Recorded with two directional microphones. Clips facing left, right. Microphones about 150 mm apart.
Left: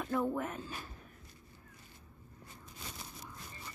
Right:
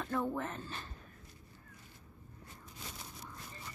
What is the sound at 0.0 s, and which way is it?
Speech, 5° left (ahead or behind).